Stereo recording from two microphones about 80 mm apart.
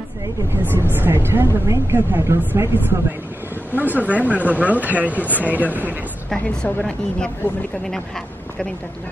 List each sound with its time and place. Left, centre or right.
0.6 s a woman's voice: right
3.7 s a woman's voice: right
4.1 s speech: centre
4.5 s a woman's voice: centre
6.3 s a woman's voice: centre